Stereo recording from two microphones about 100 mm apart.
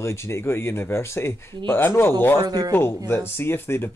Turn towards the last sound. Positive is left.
turn(degrees=25)  # may be behind; listen again after turning